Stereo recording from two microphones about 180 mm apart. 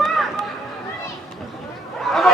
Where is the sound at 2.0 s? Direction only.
Centre (ahead or behind).